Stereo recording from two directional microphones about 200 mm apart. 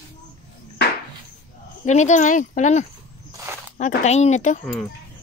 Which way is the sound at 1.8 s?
35° left (ahead or behind).